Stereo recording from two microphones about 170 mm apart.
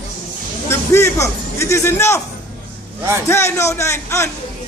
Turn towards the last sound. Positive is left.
turn(degrees=15)  # may be behind; listen again after turning